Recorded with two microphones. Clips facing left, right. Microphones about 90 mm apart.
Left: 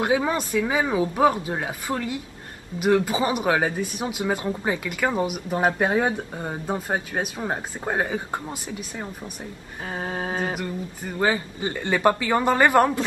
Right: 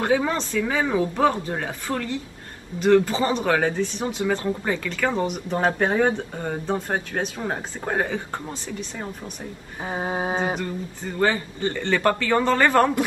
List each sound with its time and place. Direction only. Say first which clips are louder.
0.0 s speech: even; 15° left (ahead or behind)
9.8 s a sound: right 3 dB; 20° right (ahead or behind)
10.6 s speech: right 1 dB; 10° left (ahead or behind)